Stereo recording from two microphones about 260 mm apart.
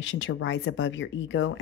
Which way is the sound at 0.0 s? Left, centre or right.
Left.